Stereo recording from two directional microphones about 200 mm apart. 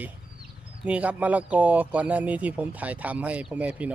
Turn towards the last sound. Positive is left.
turn(degrees=-5)  # may be behind; listen again after turning